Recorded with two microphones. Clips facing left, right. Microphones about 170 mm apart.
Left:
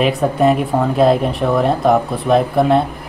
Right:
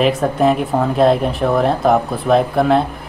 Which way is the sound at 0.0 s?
Centre (ahead or behind).